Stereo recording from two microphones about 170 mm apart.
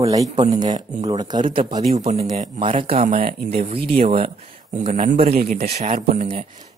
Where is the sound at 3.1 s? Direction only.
55° right (ahead or behind).